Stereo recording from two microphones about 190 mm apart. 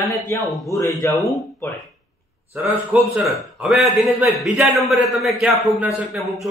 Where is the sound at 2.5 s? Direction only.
10° right (ahead or behind).